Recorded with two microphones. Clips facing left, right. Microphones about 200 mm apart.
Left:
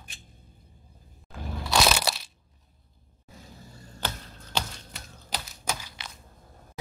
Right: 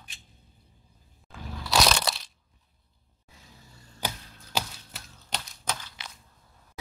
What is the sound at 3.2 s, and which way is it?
Vehicle, 45° left (ahead or behind).